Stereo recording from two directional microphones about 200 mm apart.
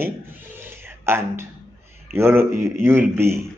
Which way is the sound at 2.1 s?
10° right (ahead or behind).